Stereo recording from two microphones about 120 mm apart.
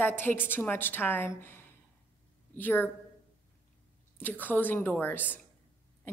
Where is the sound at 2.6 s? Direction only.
15° left (ahead or behind).